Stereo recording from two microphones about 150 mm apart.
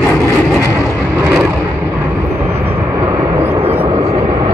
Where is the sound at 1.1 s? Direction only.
10° right (ahead or behind).